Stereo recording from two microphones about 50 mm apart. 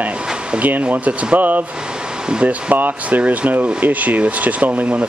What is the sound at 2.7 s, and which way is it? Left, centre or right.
Speech, right.